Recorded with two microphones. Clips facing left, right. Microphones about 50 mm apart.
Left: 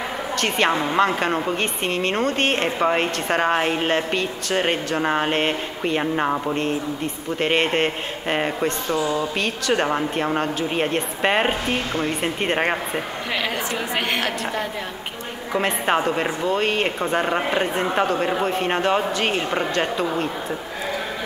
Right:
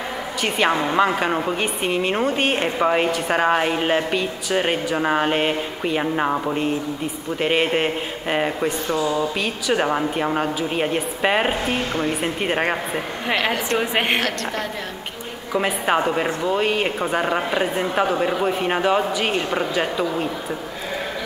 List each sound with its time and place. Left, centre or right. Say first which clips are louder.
0.4 s a woman's voice: right 1 dB; centre
13.7 s a woman's voice: right 4 dB; right
15.6 s a woman's voice: right 1 dB; centre